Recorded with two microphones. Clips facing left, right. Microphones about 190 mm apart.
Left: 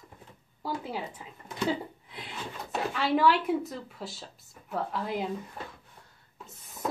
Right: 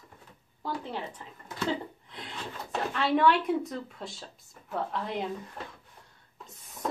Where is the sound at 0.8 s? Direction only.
10° left (ahead or behind).